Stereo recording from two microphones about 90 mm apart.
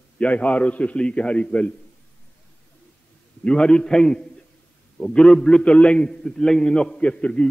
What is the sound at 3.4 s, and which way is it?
A man's voice, 10° left (ahead or behind).